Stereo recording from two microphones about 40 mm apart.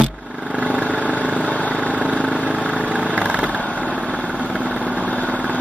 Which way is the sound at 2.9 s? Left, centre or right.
Right.